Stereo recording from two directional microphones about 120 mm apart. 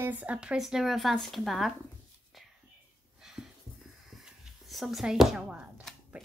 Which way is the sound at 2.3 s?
Centre (ahead or behind).